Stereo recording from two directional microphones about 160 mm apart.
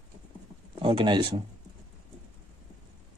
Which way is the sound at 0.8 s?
30° right (ahead or behind).